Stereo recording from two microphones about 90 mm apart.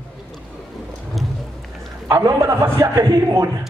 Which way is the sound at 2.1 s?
35° right (ahead or behind).